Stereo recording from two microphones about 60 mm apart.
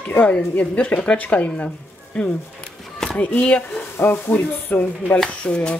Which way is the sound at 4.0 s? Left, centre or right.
Left.